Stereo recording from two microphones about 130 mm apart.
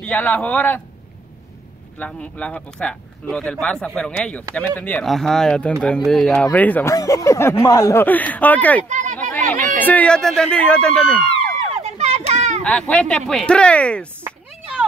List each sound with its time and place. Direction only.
0.0 s speech: 10° left (ahead or behind)
2.0 s speech: 10° left (ahead or behind)
6.9 s speech: 25° left (ahead or behind)
8.8 s a sound: 70° right (ahead or behind)
9.3 s speech: 15° left (ahead or behind)
11.7 s a sound: 55° right (ahead or behind)
12.6 s speech: 10° left (ahead or behind)